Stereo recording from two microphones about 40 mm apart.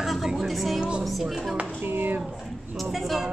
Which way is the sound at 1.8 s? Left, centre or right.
Right.